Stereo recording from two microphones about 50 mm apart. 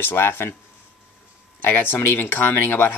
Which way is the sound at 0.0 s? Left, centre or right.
Left.